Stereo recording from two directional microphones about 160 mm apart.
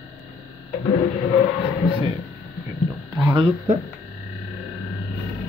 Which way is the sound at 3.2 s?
30° right (ahead or behind).